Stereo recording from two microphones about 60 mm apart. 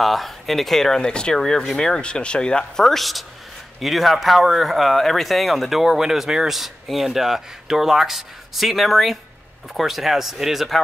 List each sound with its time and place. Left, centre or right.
0.0 s speech: centre